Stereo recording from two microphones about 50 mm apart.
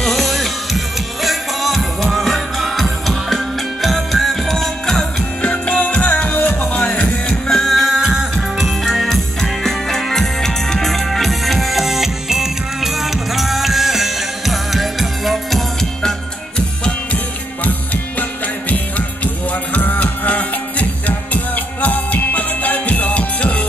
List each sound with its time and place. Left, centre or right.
0.0 s music: centre
6.0 s music: left
6.7 s music: left
7.6 s music: centre
15.8 s music: centre
18.7 s music: left